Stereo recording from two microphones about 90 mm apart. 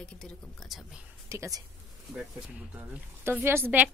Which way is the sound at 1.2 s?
35° right (ahead or behind).